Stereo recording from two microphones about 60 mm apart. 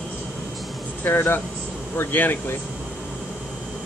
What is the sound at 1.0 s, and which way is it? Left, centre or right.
A man's voice, left.